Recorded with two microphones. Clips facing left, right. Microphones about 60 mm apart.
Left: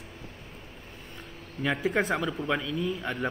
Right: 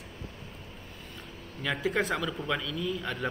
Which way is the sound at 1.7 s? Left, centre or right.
Centre.